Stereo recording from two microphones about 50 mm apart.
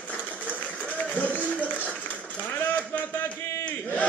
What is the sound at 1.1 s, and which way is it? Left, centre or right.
Run, left.